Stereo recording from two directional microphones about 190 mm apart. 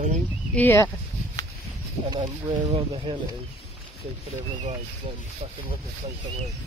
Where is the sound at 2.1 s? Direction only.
25° right (ahead or behind).